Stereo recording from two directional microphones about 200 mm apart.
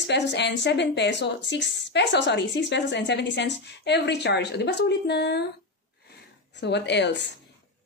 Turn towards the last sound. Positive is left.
turn(degrees=60)  # may be behind; listen again after turning